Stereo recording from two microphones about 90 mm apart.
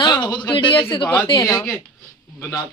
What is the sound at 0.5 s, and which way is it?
Speech, 65° left (ahead or behind).